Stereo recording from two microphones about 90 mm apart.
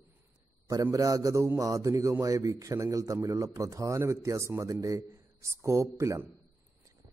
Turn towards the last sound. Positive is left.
turn(degrees=-35)  # may be behind; listen again after turning